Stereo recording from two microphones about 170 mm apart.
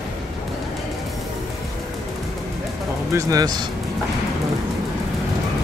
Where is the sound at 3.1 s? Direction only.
20° right (ahead or behind).